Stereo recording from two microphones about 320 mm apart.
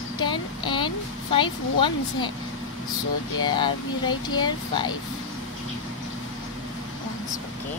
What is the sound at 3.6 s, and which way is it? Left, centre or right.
Speech, centre.